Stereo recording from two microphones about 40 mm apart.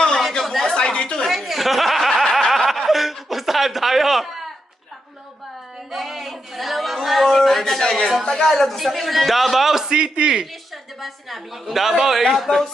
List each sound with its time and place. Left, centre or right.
0.4 s chatter: centre
0.7 s a sound: centre
0.9 s a woman's voice: left
1.3 s speech: centre
2.5 s chuckle: centre
5.9 s a sound: centre
7.8 s a man's voice: centre
9.8 s a man's voice: right
11.0 s a man's voice: centre